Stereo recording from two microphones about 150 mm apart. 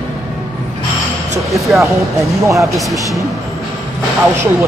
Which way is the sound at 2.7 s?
Centre (ahead or behind).